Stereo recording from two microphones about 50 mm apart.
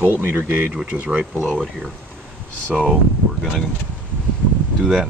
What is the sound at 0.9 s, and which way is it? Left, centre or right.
Speech, right.